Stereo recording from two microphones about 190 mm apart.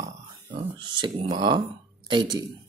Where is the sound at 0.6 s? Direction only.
25° right (ahead or behind).